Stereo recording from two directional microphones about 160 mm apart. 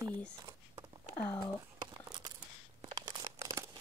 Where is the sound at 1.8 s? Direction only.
25° right (ahead or behind).